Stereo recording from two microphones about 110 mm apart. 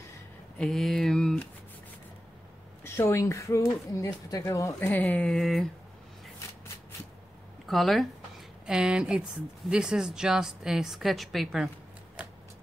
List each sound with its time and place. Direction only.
0.6 s a sound: 5° left (ahead or behind)
2.8 s speech: 25° left (ahead or behind)
4.7 s speech: 15° left (ahead or behind)
7.6 s speech: centre (ahead or behind)